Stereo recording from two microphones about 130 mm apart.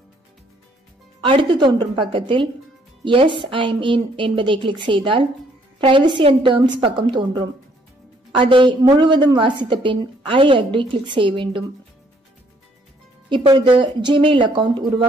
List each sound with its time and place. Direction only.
1.2 s a woman's voice: 40° right (ahead or behind)
13.3 s a woman's voice: 40° right (ahead or behind)